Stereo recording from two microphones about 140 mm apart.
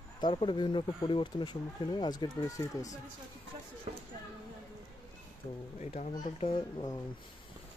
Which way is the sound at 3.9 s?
60° right (ahead or behind).